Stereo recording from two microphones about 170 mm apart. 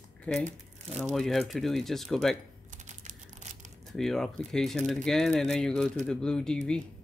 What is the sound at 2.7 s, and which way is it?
Crumpling, 45° right (ahead or behind).